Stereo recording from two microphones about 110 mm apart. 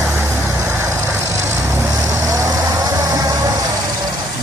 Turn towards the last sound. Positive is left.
turn(degrees=-35)  # may be behind; listen again after turning